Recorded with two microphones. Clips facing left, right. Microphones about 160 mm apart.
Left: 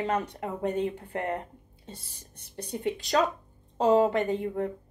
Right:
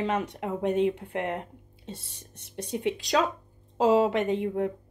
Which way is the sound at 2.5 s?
Centre (ahead or behind).